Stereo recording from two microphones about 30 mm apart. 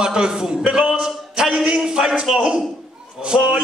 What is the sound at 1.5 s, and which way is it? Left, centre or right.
Speech, right.